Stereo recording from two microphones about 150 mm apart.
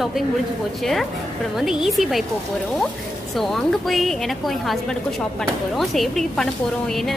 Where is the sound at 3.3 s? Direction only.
Centre (ahead or behind).